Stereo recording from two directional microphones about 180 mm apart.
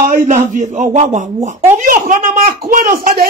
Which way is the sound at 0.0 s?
45° right (ahead or behind).